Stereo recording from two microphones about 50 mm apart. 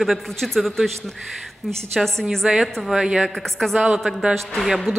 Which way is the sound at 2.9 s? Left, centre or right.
Centre.